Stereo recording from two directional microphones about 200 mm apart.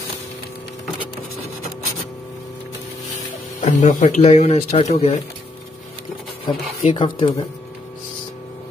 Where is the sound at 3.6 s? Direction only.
35° left (ahead or behind).